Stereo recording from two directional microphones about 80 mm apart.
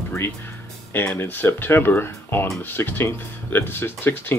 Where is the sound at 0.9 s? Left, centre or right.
Left.